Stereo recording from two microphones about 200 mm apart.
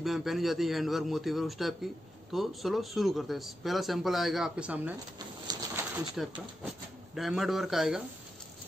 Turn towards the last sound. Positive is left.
turn(degrees=0)  # may be behind; listen again after turning